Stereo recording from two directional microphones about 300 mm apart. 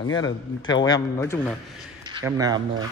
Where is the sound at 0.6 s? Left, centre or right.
Centre.